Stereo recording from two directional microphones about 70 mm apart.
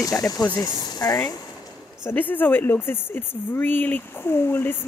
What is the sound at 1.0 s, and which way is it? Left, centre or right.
Speech, left.